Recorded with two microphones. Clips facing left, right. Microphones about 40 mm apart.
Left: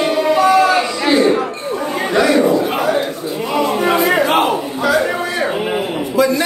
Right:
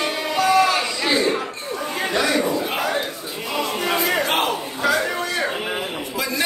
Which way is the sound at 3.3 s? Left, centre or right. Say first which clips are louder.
Left 8 dB; centre.